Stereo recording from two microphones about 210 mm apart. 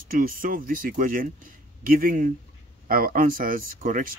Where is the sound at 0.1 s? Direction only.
40° right (ahead or behind).